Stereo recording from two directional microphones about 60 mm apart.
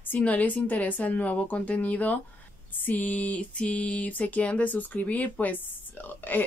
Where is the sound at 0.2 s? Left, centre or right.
Left.